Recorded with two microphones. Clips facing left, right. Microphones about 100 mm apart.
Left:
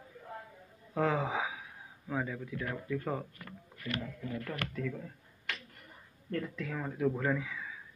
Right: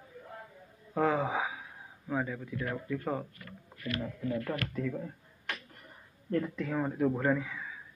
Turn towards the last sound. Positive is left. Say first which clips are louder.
# right 3 dB
turn(degrees=-25)  # may be behind; listen again after turning